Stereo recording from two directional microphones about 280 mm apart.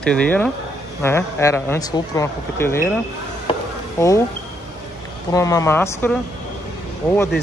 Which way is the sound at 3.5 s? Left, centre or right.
Centre.